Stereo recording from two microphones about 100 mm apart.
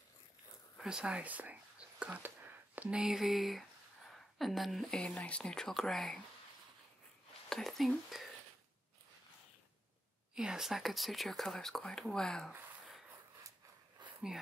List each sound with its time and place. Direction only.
0.7 s a woman's voice: 5° right (ahead or behind)
7.4 s speech: 5° left (ahead or behind)
10.3 s speech: 5° right (ahead or behind)
14.0 s a sound: 50° right (ahead or behind)